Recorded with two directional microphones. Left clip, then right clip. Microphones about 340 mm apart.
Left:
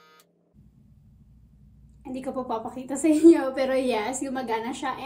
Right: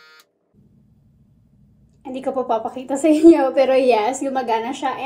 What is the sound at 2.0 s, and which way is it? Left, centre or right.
A woman's voice, right.